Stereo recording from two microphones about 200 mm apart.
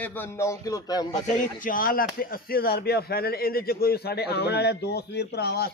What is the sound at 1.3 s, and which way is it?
Speech, 45° left (ahead or behind).